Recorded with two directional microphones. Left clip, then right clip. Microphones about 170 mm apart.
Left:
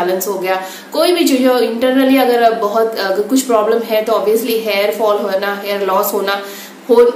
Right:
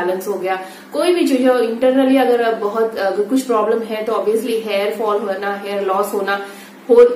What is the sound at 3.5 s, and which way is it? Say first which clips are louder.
A woman's voice: left 5 dB; 5° left (ahead or behind).